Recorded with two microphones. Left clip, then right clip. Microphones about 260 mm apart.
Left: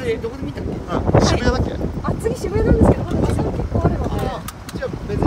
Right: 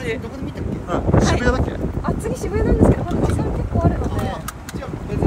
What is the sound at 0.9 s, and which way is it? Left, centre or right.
Speech, centre.